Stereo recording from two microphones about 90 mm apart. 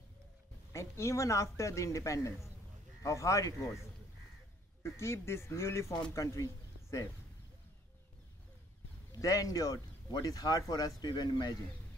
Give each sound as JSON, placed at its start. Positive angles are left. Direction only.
{"t": 0.7, "sound": "speech", "side_deg": 30}
{"t": 4.8, "sound": "speech", "side_deg": 30}
{"t": 9.1, "sound": "speech", "side_deg": 40}